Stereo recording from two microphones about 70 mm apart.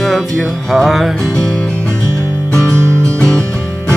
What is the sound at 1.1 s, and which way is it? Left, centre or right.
Music, centre.